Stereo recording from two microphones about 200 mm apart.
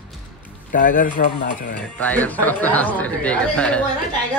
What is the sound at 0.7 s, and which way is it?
Speech, 45° left (ahead or behind).